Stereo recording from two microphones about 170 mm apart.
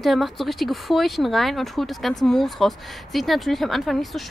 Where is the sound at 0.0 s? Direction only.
Centre (ahead or behind).